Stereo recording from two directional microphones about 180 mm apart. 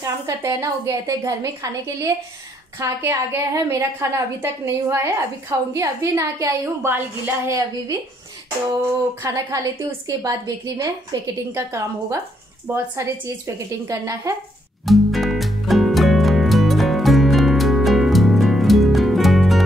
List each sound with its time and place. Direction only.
0.0 s a woman's voice: 15° right (ahead or behind)
9.2 s a woman's voice: 20° right (ahead or behind)
14.9 s music: centre (ahead or behind)